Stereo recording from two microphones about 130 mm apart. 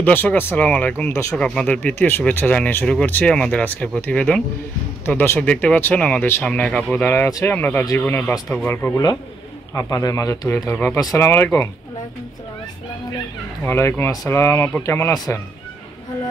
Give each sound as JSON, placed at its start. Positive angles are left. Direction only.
{"t": 0.0, "sound": "speech", "side_deg": 15}
{"t": 7.1, "sound": "speech", "side_deg": 25}
{"t": 9.8, "sound": "speech", "side_deg": 25}
{"t": 13.7, "sound": "speech", "side_deg": 20}